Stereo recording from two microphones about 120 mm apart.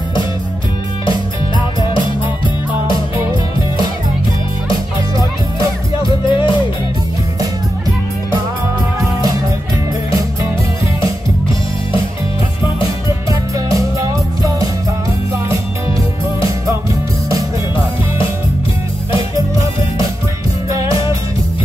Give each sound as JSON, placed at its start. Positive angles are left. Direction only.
{"t": 6.0, "sound": "music", "side_deg": 40}
{"t": 13.7, "sound": "music", "side_deg": -30}